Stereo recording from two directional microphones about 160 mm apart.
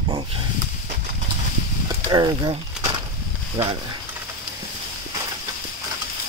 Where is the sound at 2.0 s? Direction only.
25° right (ahead or behind).